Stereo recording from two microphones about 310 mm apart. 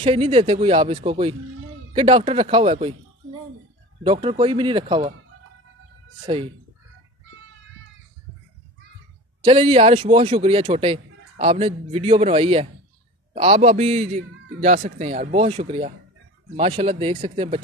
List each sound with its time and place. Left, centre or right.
0.0 s speech: centre
4.0 s speech: centre
6.2 s speech: centre
9.4 s a man's voice: centre